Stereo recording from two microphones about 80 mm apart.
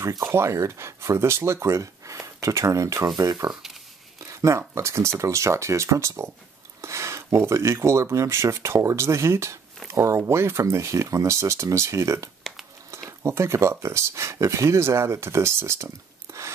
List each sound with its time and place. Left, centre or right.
0.2 s speech: right
4.2 s speech: right